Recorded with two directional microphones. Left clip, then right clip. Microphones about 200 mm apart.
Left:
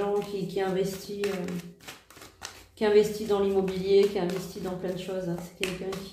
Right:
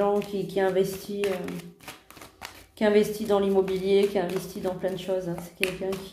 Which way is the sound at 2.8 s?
45° right (ahead or behind).